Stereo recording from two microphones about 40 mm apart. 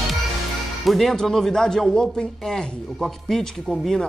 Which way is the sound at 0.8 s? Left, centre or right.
Centre.